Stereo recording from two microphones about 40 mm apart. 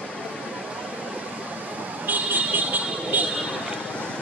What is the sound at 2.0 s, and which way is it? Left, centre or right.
Vehicle, right.